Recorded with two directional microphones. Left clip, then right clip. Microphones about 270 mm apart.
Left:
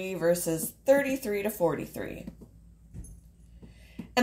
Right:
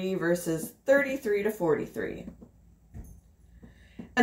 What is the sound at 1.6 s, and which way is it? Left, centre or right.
Speech, left.